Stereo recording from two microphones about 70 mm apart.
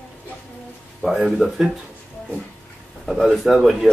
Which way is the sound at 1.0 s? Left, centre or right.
Centre.